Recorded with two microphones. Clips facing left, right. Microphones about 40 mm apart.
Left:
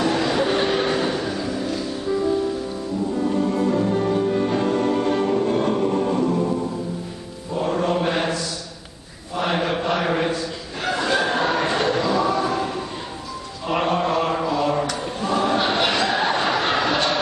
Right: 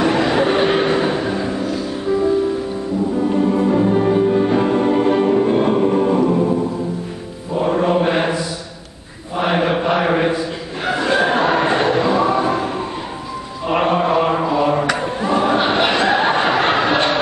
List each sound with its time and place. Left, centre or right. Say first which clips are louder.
0.0 s vehicle: right 5 dB; right
1.7 s music: right 4 dB; centre
7.5 s mantra: right 5 dB; centre
9.4 s chant: right 5 dB; centre
10.9 s chicken: right 5 dB; centre
13.7 s chant: right 5 dB; centre
15.1 s a sound: right 3 dB; centre